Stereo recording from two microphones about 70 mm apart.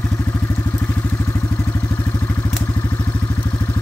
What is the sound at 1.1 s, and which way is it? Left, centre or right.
Vehicle, left.